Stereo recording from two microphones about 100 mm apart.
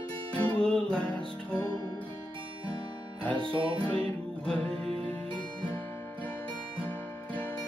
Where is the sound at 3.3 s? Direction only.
55° right (ahead or behind).